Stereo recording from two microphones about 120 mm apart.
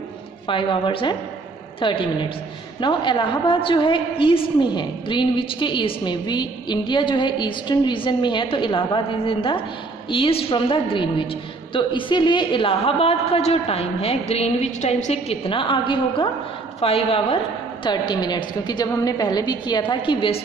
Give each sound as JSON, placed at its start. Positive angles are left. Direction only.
{"t": 0.5, "sound": "a woman's voice", "side_deg": 45}
{"t": 17.8, "sound": "a woman's voice", "side_deg": 40}